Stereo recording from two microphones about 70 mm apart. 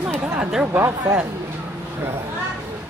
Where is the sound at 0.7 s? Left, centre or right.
Right.